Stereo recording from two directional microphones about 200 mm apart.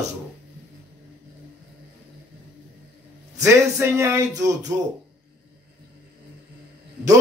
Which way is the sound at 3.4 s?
15° right (ahead or behind).